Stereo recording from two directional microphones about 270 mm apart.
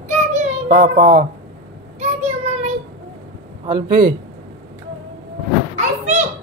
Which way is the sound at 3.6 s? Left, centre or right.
Centre.